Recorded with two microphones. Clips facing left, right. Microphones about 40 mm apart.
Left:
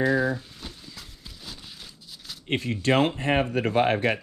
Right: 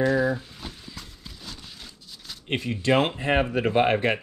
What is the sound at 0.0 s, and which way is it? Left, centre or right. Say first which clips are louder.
Speech: right 1 dB; centre.